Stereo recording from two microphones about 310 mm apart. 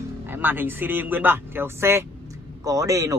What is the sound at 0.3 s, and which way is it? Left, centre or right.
Speech, centre.